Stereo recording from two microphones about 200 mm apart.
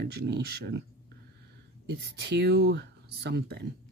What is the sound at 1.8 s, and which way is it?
Speech, 55° right (ahead or behind).